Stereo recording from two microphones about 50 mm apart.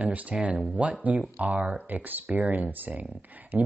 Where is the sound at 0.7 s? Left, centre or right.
Right.